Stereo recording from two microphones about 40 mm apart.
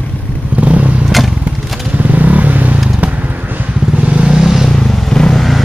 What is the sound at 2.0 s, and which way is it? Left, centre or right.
Vehicle, right.